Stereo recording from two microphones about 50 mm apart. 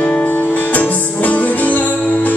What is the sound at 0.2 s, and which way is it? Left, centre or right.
Music, left.